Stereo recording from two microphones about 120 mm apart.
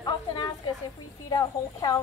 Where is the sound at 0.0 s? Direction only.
35° left (ahead or behind).